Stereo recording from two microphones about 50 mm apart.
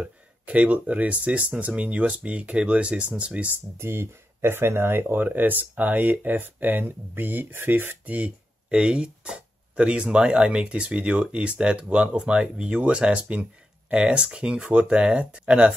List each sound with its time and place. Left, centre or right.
0.0 s speech: right
3.7 s speech: right
8.0 s speech: right